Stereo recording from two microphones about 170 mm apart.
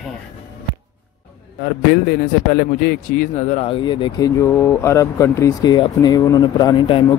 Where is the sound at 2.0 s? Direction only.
70° left (ahead or behind).